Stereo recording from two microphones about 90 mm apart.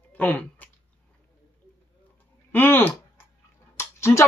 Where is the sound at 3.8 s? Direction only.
30° left (ahead or behind).